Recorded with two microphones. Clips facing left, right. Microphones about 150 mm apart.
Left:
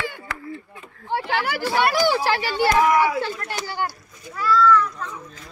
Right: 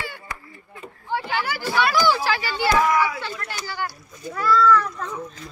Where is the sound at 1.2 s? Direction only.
65° left (ahead or behind).